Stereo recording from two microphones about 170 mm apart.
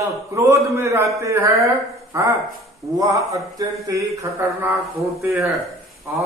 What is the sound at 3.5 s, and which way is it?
A man's voice, 20° right (ahead or behind).